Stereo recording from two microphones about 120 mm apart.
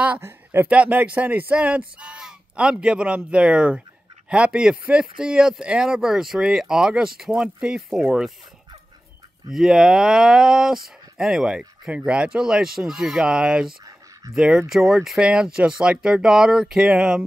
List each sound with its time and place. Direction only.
0.0 s speech: 15° right (ahead or behind)
9.5 s speech: 5° right (ahead or behind)